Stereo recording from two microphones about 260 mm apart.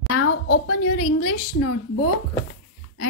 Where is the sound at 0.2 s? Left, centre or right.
Left.